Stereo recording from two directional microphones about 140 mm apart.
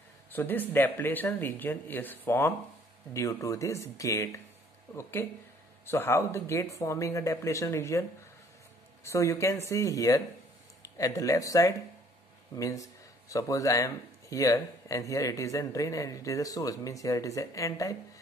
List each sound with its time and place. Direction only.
0.3 s speech: 15° left (ahead or behind)
5.9 s speech: 15° left (ahead or behind)
9.0 s speech: 20° left (ahead or behind)